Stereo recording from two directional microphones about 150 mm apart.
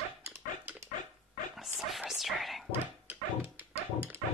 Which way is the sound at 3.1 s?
10° right (ahead or behind).